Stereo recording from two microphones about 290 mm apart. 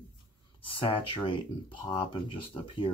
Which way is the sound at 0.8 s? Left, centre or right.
Centre.